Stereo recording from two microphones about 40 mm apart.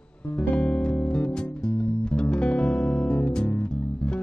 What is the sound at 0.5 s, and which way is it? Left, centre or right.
Music, left.